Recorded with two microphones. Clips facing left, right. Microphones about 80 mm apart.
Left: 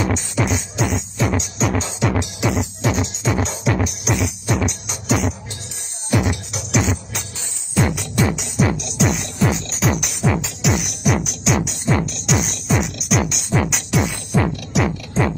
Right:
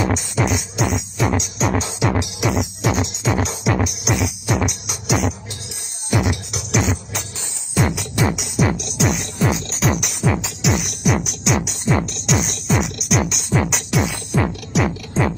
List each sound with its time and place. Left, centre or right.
0.0 s music: centre
2.9 s music: centre